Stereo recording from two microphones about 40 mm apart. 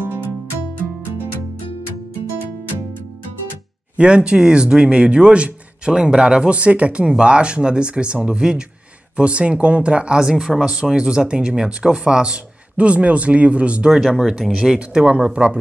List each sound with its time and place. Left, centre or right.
3.9 s speech: right
10.1 s speech: centre
13.9 s speech: centre
14.6 s speech: right